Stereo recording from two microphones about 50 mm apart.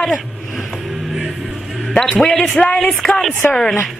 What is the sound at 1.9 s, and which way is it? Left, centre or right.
A man's voice, centre.